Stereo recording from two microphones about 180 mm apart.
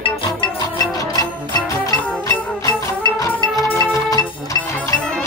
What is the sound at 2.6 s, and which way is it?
Music, 20° left (ahead or behind).